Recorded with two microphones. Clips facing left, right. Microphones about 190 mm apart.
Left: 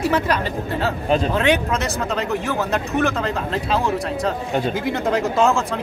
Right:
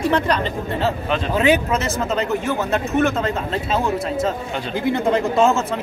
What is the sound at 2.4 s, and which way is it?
Speech, centre (ahead or behind).